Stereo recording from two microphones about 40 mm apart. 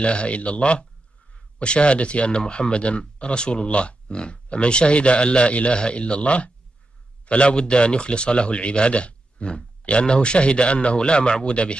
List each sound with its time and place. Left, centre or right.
0.0 s speech: left